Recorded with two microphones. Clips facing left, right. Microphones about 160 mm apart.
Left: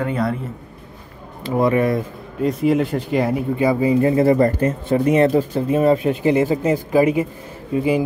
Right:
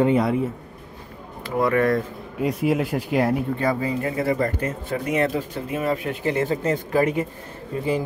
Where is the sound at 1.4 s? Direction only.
20° left (ahead or behind).